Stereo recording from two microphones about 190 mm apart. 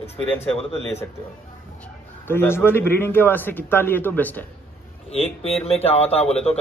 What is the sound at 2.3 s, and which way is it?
A man's voice, 10° left (ahead or behind).